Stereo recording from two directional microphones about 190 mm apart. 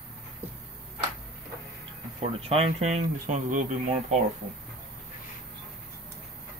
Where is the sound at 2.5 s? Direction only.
35° right (ahead or behind).